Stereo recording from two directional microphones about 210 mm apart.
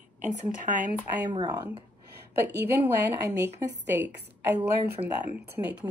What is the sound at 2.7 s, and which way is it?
Speech, 15° right (ahead or behind).